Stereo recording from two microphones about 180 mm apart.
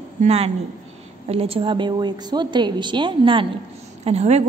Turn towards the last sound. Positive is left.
turn(degrees=-35)  # may be behind; listen again after turning